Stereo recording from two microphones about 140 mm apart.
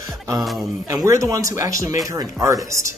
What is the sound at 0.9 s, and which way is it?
Speech, 20° right (ahead or behind).